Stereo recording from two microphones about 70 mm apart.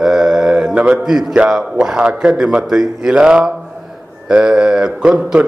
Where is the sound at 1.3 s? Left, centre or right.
Centre.